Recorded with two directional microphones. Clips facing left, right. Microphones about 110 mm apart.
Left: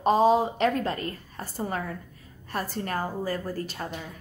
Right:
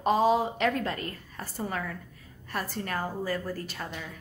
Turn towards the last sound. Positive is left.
turn(degrees=35)  # may be behind; listen again after turning